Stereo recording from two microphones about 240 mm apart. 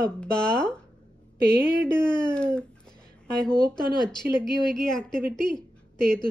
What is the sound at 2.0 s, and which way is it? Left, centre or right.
Speech, centre.